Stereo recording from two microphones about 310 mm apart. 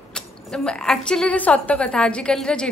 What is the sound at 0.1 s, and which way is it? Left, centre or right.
Speech, centre.